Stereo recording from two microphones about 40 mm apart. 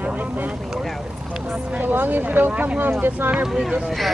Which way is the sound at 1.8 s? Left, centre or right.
Right.